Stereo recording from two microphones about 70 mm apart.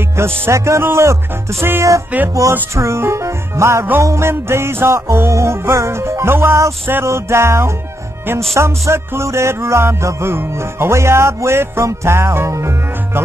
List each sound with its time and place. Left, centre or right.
0.2 s music: right
2.1 s music: right
2.7 s speech: right
4.0 s music: right